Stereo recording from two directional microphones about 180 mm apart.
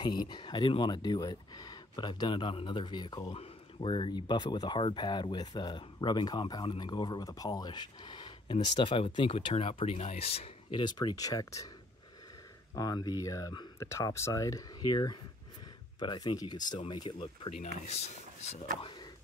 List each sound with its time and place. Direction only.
0.0 s speech: 25° left (ahead or behind)
12.7 s speech: 20° left (ahead or behind); by 18.6 s 40° left (ahead or behind)
18.8 s speech: 25° left (ahead or behind)